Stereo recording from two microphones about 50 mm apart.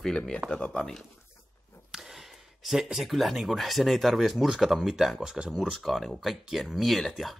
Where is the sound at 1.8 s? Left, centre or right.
Centre.